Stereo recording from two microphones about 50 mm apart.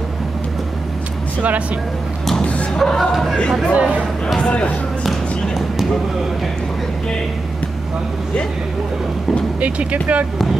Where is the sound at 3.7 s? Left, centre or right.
Right.